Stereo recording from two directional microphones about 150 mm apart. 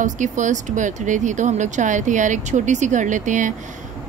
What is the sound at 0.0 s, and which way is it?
Speech, 55° right (ahead or behind).